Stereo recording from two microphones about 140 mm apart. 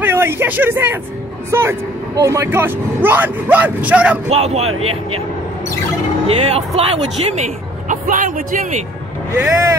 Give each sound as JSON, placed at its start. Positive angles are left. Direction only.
{"t": 0.0, "sound": "speech", "side_deg": -15}
{"t": 4.3, "sound": "speech", "side_deg": -45}
{"t": 6.2, "sound": "speech", "side_deg": -45}
{"t": 9.4, "sound": "speech", "side_deg": -25}